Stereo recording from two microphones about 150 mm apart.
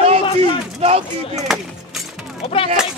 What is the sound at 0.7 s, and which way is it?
Speech, 45° right (ahead or behind).